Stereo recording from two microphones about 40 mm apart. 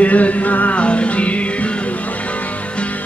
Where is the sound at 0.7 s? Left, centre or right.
Left.